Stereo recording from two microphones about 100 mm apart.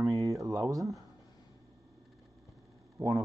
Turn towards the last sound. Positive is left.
turn(degrees=-30)  # may be behind; listen again after turning